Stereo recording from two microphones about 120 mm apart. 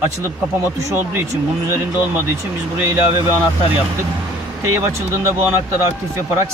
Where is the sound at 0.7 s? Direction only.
25° right (ahead or behind).